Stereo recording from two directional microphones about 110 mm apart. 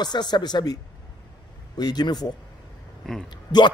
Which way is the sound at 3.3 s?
45° left (ahead or behind).